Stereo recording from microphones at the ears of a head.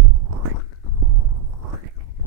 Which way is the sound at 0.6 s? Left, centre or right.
Left.